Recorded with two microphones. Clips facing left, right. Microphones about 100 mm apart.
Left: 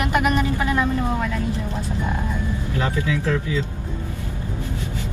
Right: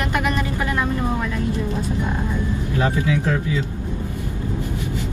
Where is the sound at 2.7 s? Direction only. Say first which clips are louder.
Right 3 dB; 25° right (ahead or behind).